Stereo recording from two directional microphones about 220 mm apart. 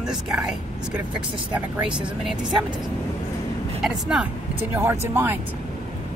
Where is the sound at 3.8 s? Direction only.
5° right (ahead or behind).